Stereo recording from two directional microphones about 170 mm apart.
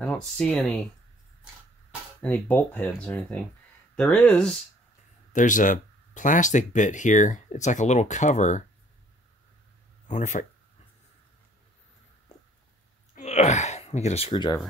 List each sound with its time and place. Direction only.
0.0 s speech: 5° left (ahead or behind)
2.2 s speech: 10° left (ahead or behind)
5.3 s speech: 50° left (ahead or behind)
10.0 s speech: 45° left (ahead or behind)
13.1 s speech: 40° left (ahead or behind); by 14.6 s 25° left (ahead or behind)